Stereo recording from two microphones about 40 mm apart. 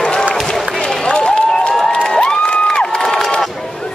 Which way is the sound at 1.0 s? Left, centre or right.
Centre.